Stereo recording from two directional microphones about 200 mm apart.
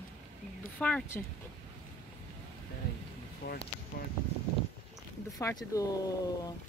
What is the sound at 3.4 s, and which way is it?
Speech, 50° left (ahead or behind).